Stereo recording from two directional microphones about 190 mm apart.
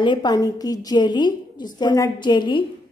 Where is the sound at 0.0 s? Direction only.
25° left (ahead or behind).